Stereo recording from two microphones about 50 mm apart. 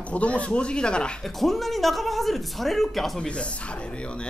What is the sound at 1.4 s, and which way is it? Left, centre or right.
Speech, centre.